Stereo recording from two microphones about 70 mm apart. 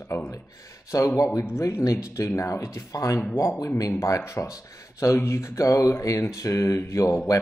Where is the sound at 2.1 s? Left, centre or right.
Left.